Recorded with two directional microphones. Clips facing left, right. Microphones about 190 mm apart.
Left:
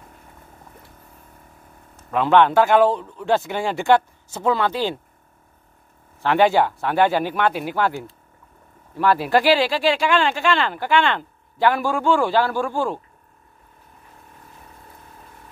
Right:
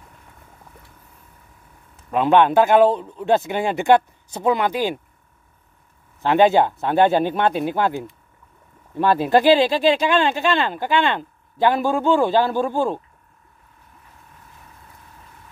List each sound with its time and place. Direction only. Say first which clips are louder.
2.0 s speech: right 1 dB; 20° right (ahead or behind)
6.2 s speech: right 2 dB; 20° right (ahead or behind)